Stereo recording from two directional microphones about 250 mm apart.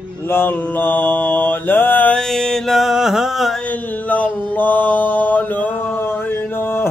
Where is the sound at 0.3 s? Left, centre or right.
Centre.